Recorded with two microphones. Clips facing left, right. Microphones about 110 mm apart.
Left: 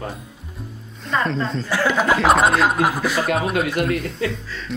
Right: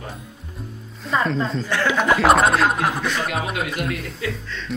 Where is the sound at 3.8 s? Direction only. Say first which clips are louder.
Left 4 dB; 35° left (ahead or behind).